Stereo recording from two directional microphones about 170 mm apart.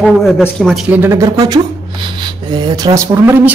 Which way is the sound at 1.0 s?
20° right (ahead or behind).